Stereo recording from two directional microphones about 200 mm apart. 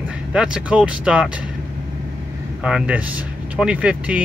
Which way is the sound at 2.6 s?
5° right (ahead or behind).